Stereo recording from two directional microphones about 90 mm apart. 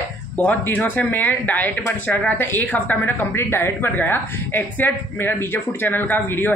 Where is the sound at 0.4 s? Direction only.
20° left (ahead or behind).